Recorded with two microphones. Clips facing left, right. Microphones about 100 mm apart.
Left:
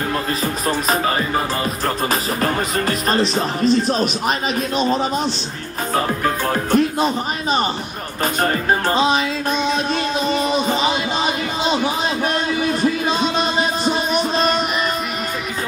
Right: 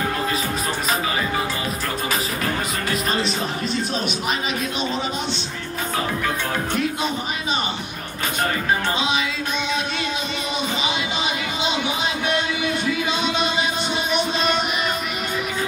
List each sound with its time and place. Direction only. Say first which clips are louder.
0.7 s music: left 8 dB; 35° left (ahead or behind)
5.9 s speech: left 5 dB; 40° left (ahead or behind)
8.4 s music: left 3 dB; 40° left (ahead or behind)
10.3 s music: left 7 dB; 40° left (ahead or behind)
12.6 s music: left 4 dB; 40° left (ahead or behind)